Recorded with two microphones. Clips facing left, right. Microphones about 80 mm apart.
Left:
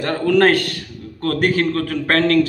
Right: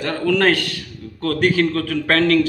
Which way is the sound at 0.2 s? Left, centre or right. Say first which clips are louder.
Left 3 dB; left.